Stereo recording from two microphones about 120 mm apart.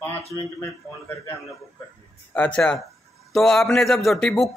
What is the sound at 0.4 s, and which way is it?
Speech, 20° left (ahead or behind).